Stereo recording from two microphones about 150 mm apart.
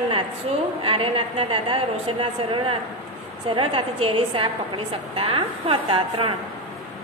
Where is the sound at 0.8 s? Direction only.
35° right (ahead or behind).